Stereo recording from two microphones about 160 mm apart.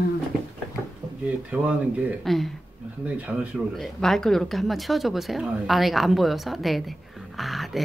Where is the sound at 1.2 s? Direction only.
10° right (ahead or behind).